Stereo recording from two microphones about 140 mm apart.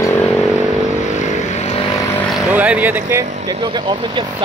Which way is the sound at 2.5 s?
10° right (ahead or behind).